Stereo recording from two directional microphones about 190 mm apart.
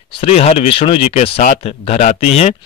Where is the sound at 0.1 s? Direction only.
30° left (ahead or behind).